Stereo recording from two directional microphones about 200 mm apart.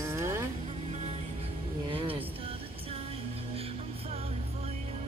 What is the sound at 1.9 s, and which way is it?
Music, 25° right (ahead or behind).